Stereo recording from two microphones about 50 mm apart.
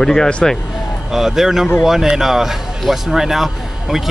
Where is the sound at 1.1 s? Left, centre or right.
Centre.